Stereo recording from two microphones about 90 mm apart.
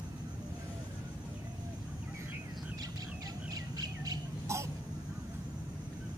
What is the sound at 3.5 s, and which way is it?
Bird, 45° right (ahead or behind).